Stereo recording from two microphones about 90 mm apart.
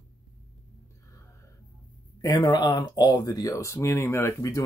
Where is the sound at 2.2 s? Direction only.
50° left (ahead or behind).